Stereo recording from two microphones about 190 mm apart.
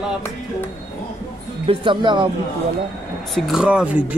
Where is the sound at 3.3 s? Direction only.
5° right (ahead or behind).